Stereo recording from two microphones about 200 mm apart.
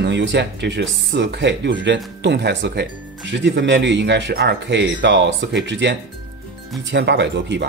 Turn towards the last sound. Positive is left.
turn(degrees=-60)  # may be behind; listen again after turning